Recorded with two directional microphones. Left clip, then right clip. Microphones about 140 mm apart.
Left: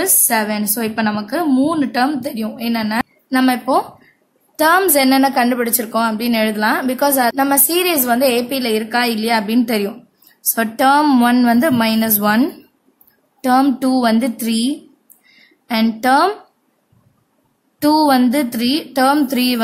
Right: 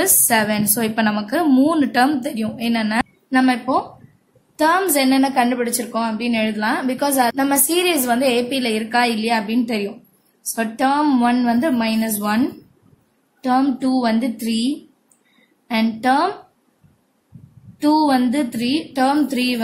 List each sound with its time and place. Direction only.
0.0 s a woman's voice: 5° left (ahead or behind)
3.3 s a woman's voice: 30° left (ahead or behind)
15.7 s a woman's voice: 30° left (ahead or behind)
17.7 s a woman's voice: 30° left (ahead or behind)